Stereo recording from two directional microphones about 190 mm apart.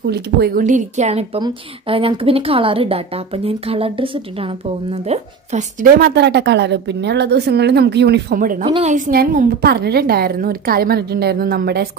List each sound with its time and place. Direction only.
0.0 s a woman's voice: 55° right (ahead or behind)
0.7 s a woman's voice: 40° right (ahead or behind)
8.6 s a woman's voice: 35° right (ahead or behind); by 11.9 s 55° right (ahead or behind)